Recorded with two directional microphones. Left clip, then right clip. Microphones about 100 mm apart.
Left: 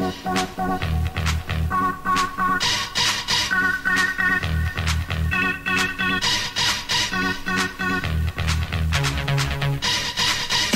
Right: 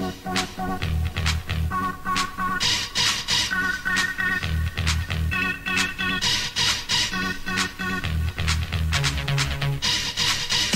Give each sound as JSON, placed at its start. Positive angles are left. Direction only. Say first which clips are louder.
{"t": 0.0, "sound": "music", "louder": "left 3 dB", "side_deg": 35}